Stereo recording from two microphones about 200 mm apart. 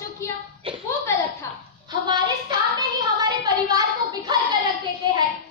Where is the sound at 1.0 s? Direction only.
10° left (ahead or behind).